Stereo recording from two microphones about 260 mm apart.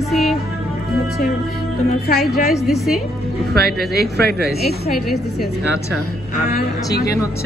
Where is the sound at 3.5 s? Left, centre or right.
Right.